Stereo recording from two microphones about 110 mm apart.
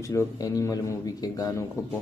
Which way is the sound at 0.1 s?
30° left (ahead or behind).